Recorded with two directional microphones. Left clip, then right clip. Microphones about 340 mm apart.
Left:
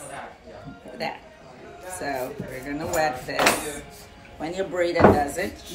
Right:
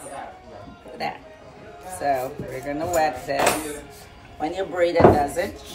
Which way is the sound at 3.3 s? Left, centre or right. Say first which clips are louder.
Even; centre.